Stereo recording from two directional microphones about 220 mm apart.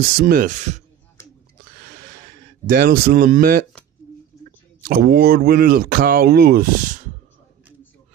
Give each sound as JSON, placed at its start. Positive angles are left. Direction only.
{"t": 0.0, "sound": "speech", "side_deg": -40}
{"t": 1.6, "sound": "a sound", "side_deg": -45}
{"t": 2.6, "sound": "speech", "side_deg": -40}
{"t": 4.8, "sound": "speech", "side_deg": -45}